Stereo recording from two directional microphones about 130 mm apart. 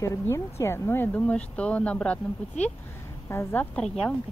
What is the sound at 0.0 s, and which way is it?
Speech, 25° left (ahead or behind).